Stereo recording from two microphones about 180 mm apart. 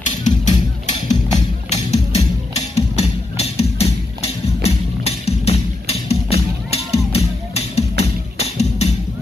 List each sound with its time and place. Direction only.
0.0 s music: 40° left (ahead or behind)
1.7 s music: 40° left (ahead or behind)